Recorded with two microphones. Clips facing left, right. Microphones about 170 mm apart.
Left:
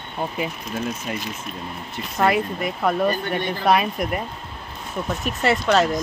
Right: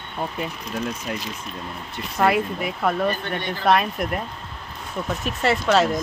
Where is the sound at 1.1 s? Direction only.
5° left (ahead or behind).